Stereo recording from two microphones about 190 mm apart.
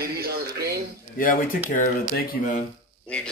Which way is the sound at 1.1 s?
45° left (ahead or behind).